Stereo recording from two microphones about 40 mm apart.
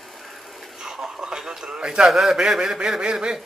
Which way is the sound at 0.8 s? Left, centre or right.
Centre.